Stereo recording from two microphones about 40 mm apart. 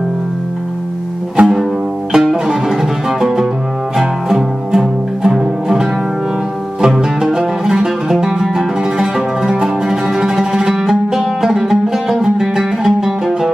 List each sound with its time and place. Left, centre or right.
1.4 s music: right
2.1 s music: centre
6.9 s music: centre